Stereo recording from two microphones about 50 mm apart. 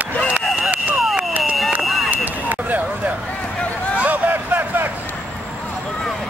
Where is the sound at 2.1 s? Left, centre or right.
Right.